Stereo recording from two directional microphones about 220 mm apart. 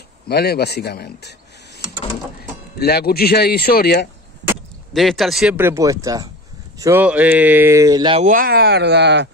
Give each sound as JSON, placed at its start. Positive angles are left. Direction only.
{"t": 0.3, "sound": "speech", "side_deg": 45}
{"t": 2.8, "sound": "speech", "side_deg": 45}
{"t": 4.9, "sound": "speech", "side_deg": 0}
{"t": 8.3, "sound": "speech", "side_deg": -40}